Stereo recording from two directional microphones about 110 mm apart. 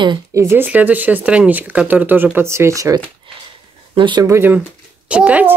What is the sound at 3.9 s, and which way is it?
Speech, 45° right (ahead or behind).